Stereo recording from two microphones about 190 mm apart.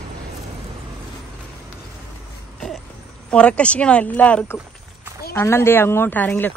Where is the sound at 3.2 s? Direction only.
5° left (ahead or behind).